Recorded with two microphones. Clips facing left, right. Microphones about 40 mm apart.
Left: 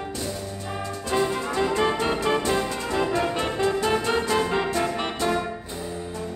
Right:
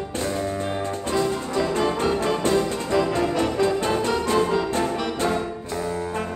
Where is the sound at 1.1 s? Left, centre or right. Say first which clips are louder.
Even; left.